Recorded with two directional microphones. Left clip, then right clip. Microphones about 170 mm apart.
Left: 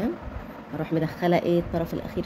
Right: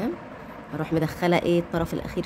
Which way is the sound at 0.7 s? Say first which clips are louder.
Right 1 dB; 25° right (ahead or behind).